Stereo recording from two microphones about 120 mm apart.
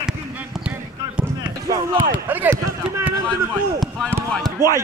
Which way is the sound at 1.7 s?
15° right (ahead or behind).